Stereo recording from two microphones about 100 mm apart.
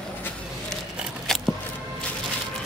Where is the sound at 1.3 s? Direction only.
5° left (ahead or behind).